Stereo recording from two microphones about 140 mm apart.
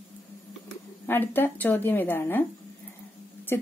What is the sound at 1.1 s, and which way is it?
A woman's voice, 15° left (ahead or behind).